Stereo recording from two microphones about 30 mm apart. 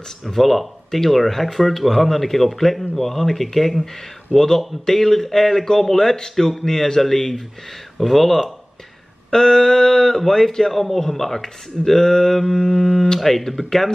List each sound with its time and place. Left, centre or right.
0.2 s speech: centre
9.3 s speech: centre
10.7 s speech: centre
12.7 s speech: left
13.2 s speech: centre